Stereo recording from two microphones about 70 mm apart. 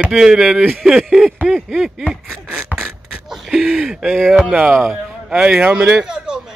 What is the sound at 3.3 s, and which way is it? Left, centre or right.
Speech, centre.